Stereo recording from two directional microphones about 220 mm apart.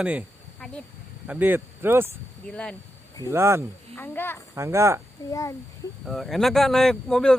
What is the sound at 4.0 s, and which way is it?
Speech, 10° left (ahead or behind).